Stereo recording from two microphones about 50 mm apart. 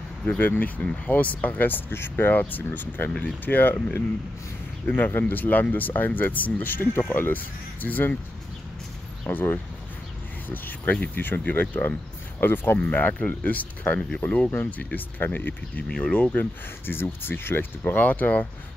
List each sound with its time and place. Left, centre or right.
0.4 s speech: left
0.7 s speech: left
1.1 s speech: left
9.3 s speech: left
12.7 s speech: left
15.9 s speech: left
16.8 s speech: left